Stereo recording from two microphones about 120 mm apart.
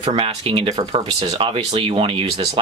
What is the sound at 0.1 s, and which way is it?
Speech, 50° right (ahead or behind).